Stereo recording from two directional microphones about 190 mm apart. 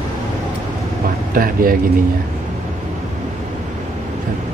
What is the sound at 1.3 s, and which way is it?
Speech, 50° right (ahead or behind).